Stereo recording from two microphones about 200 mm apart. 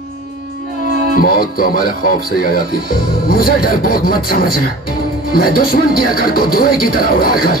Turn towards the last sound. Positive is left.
turn(degrees=50)  # may be behind; listen again after turning